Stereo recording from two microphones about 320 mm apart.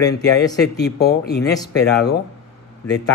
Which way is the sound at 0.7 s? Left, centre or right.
Left.